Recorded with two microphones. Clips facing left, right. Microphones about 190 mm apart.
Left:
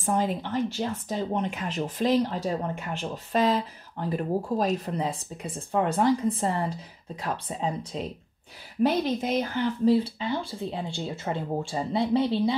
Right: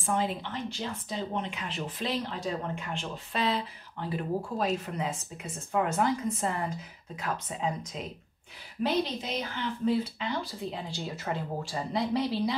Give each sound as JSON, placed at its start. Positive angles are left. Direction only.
{"t": 0.0, "sound": "speech", "side_deg": 40}
{"t": 8.8, "sound": "speech", "side_deg": 50}
{"t": 9.8, "sound": "speech", "side_deg": 30}